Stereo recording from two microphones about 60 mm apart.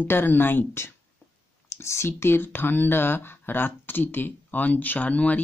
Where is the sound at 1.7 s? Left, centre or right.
Left.